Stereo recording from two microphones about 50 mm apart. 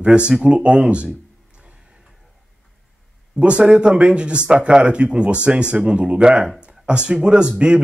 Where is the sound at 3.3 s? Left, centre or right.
Right.